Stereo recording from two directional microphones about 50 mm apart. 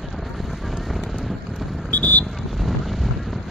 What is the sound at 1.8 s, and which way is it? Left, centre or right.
Vehicle, left.